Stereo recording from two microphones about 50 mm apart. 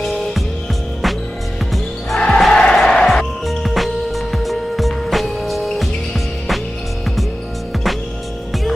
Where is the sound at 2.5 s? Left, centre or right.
Centre.